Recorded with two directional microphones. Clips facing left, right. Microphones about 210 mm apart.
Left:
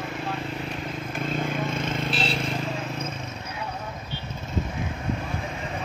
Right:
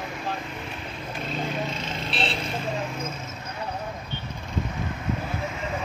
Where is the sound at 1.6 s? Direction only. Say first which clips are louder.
Left 4 dB; 50° left (ahead or behind).